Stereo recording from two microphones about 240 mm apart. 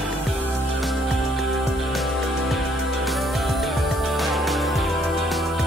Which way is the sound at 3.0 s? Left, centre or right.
Centre.